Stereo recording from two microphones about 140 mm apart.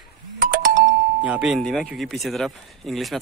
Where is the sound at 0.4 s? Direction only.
90° right.